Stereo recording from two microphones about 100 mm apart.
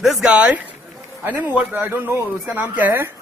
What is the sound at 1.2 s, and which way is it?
Speech, 15° right (ahead or behind).